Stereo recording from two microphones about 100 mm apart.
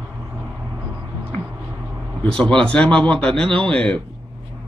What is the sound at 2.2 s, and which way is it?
Speech, 10° left (ahead or behind).